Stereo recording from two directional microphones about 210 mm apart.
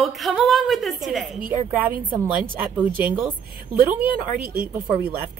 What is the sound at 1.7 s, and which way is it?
Speech, 10° right (ahead or behind).